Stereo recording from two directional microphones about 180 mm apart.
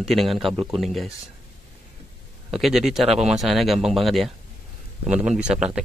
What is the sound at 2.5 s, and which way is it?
Speech, centre (ahead or behind).